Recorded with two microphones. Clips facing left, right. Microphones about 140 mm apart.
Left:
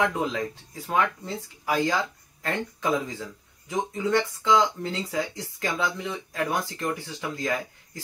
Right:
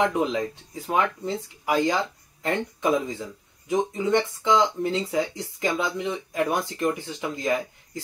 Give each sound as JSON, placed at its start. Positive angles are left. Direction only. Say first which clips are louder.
{"t": 0.0, "sound": "speech", "louder": "right 3 dB", "side_deg": -20}